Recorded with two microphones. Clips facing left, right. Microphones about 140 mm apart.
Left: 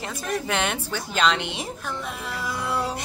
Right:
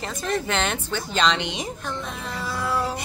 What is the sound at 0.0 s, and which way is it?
A woman's voice, 5° left (ahead or behind).